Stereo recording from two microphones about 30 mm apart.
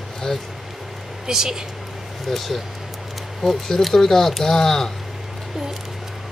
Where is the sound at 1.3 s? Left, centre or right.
Centre.